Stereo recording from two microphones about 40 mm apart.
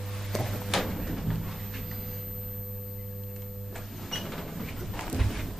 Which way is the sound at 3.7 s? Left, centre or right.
Centre.